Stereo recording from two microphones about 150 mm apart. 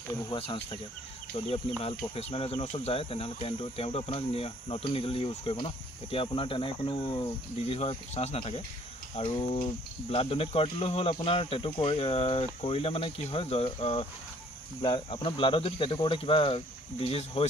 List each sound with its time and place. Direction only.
0.3 s speech: 35° left (ahead or behind)
1.8 s speech: 40° left (ahead or behind)